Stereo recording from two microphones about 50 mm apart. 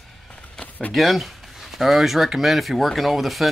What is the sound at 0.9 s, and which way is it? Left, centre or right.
Speech, centre.